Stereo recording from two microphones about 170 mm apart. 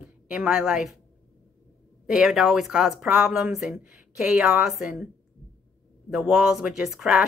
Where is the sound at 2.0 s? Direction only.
5° right (ahead or behind).